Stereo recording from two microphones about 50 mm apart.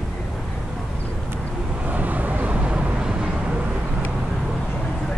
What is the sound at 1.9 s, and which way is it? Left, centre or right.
Vehicle, right.